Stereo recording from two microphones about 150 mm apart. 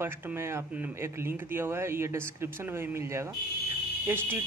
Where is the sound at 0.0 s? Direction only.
15° right (ahead or behind).